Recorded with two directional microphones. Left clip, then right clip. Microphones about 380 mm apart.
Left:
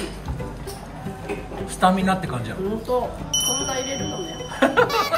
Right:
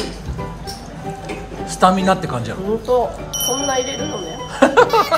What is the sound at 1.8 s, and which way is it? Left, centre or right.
Speech, centre.